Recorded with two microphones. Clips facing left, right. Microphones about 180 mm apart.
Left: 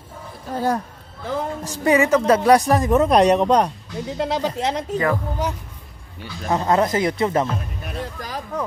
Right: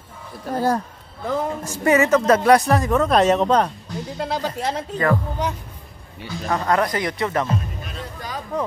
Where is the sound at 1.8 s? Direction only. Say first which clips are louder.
Even; 15° left (ahead or behind).